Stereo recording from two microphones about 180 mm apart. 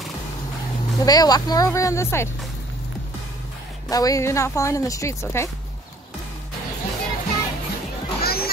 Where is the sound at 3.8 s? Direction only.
20° left (ahead or behind).